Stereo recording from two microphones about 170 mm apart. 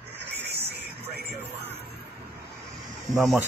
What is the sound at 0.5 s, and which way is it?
Music, 75° right (ahead or behind).